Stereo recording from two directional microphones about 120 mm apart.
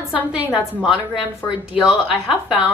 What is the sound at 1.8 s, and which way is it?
Speech, 5° right (ahead or behind).